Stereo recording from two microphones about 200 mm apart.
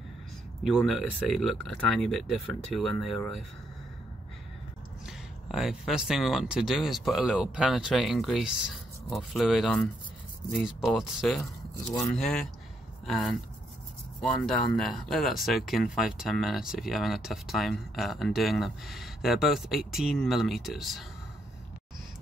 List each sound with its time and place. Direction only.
0.7 s speech: centre (ahead or behind)
5.0 s speech: centre (ahead or behind)